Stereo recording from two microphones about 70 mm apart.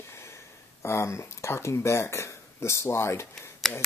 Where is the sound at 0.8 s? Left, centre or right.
Left.